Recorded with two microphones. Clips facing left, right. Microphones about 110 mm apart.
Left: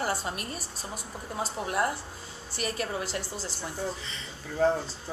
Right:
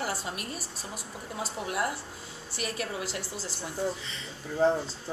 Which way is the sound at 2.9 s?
5° right (ahead or behind).